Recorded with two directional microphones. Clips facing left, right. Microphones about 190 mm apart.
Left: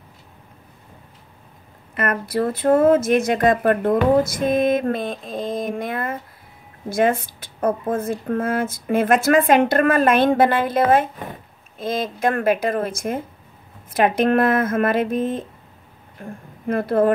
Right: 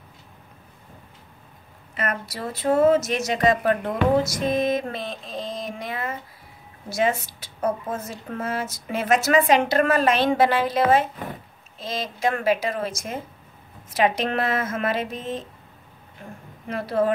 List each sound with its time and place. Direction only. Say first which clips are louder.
2.0 s a woman's voice: left 7 dB; 55° left (ahead or behind)
16.6 s a woman's voice: left 5 dB; 50° left (ahead or behind)